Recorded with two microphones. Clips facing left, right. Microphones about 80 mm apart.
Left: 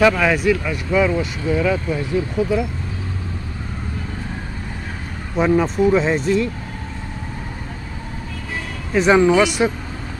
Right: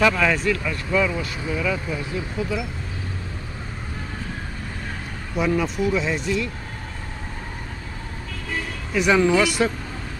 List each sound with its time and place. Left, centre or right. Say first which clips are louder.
0.0 s speech: left 4 dB; centre
1.1 s speech: left 7 dB; left
5.3 s speech: left 5 dB; left
8.9 s speech: left 4 dB; left